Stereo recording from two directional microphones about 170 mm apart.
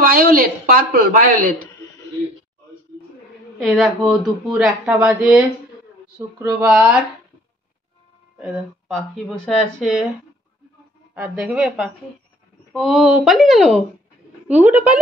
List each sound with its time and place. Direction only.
0.0 s a woman's voice: 60° right (ahead or behind)
3.5 s speech: centre (ahead or behind)
8.4 s speech: centre (ahead or behind)
11.1 s speech: 5° right (ahead or behind)